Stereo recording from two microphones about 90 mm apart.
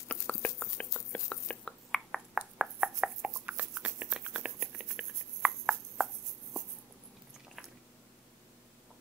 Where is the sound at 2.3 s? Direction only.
10° right (ahead or behind).